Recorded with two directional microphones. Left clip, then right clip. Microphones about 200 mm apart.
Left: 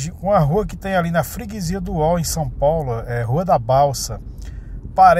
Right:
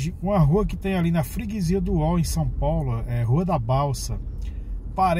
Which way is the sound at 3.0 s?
15° right (ahead or behind).